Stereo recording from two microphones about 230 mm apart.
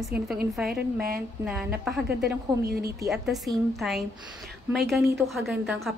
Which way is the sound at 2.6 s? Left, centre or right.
Right.